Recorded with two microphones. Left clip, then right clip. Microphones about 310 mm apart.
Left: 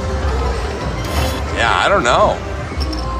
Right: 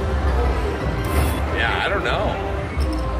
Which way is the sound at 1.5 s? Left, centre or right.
Centre.